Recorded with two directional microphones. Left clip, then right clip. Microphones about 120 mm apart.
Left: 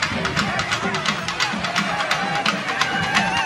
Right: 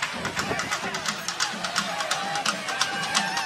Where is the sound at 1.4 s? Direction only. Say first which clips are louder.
Left 6 dB; 60° left (ahead or behind).